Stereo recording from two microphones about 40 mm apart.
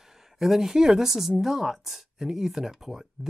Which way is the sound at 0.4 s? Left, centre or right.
Centre.